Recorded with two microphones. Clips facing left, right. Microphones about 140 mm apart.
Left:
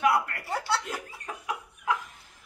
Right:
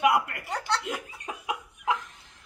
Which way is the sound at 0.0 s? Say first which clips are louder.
Right 1 dB; 20° right (ahead or behind).